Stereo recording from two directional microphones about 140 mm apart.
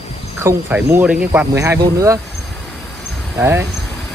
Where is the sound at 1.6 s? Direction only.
25° right (ahead or behind).